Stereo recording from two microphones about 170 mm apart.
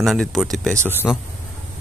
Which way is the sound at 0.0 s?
Centre (ahead or behind).